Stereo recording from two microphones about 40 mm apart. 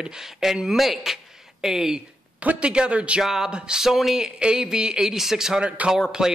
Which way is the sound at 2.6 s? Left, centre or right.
Right.